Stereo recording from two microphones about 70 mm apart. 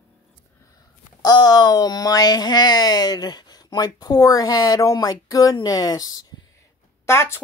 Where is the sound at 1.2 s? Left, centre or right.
Left.